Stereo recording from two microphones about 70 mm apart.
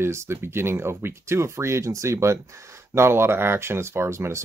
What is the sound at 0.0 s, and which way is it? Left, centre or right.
Speech, right.